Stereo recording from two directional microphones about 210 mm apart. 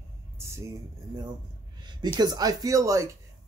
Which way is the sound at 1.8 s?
20° right (ahead or behind).